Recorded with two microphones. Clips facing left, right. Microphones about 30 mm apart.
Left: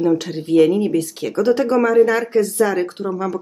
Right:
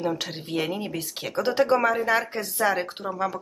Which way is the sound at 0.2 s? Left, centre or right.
Centre.